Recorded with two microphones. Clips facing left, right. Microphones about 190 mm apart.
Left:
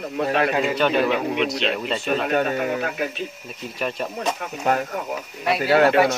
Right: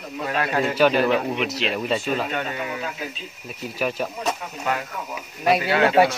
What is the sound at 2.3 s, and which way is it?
Speech, 45° left (ahead or behind).